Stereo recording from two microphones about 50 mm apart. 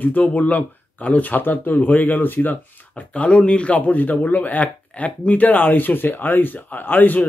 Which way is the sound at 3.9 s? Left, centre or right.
Left.